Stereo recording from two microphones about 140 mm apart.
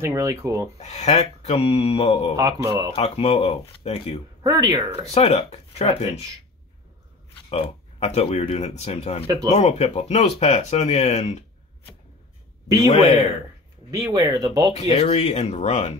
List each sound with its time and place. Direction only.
0.0 s speech: 20° right (ahead or behind)
0.7 s speech: 50° left (ahead or behind)
2.3 s speech: 25° right (ahead or behind)
2.9 s speech: 45° left (ahead or behind)
4.4 s speech: 25° right (ahead or behind)
5.0 s speech: 45° left (ahead or behind)
7.4 s speech: 45° left (ahead or behind)
13.8 s speech: 25° right (ahead or behind)
14.7 s speech: 55° left (ahead or behind)